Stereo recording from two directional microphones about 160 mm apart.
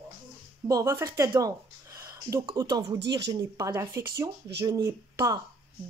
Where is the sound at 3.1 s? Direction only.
25° right (ahead or behind).